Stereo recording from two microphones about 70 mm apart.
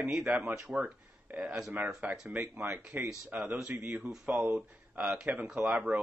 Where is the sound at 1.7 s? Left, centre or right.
Right.